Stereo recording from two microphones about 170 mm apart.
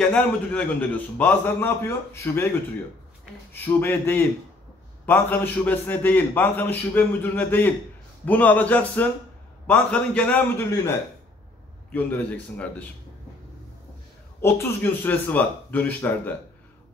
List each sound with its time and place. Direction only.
0.0 s a man's voice: 5° left (ahead or behind)
3.6 s a man's voice: 10° left (ahead or behind)
11.9 s a man's voice: 10° left (ahead or behind)
14.4 s a man's voice: 15° left (ahead or behind)